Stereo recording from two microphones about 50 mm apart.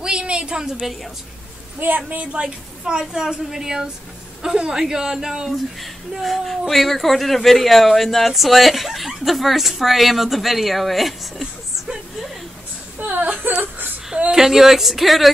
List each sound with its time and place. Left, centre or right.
0.0 s a sound: centre
0.6 s a woman's voice: centre
1.8 s a woman's voice: right
2.4 s a woman's voice: centre
6.1 s speech: centre
13.1 s whimper: right
13.4 s whimper: right
14.3 s speech: centre